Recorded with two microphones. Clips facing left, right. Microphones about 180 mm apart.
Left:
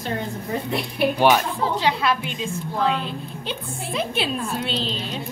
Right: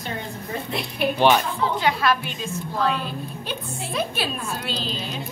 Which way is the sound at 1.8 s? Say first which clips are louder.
Right 1 dB; 25° left (ahead or behind).